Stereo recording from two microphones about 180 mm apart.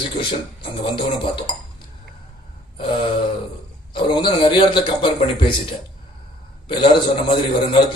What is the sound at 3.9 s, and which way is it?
A man's voice, 25° left (ahead or behind).